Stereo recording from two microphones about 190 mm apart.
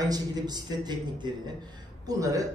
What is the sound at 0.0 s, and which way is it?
A man's voice, 20° right (ahead or behind).